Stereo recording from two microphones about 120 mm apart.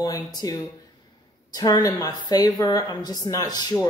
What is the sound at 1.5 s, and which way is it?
A woman's voice, 30° left (ahead or behind).